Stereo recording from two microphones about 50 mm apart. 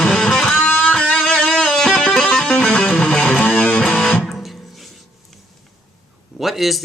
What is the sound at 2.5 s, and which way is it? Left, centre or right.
Music, left.